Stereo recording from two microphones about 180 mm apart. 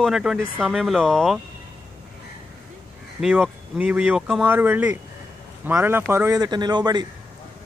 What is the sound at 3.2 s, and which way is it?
Speech, 5° right (ahead or behind).